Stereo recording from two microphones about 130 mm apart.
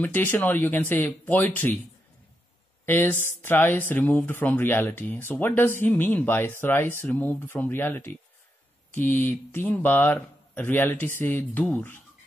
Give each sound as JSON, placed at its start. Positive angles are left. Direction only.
{"t": 0.0, "sound": "speech", "side_deg": 15}
{"t": 2.8, "sound": "speech", "side_deg": 15}